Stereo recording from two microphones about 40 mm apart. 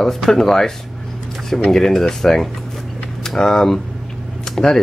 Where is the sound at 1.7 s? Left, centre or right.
Centre.